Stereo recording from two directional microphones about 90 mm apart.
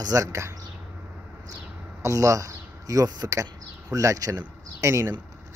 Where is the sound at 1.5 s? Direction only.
35° right (ahead or behind).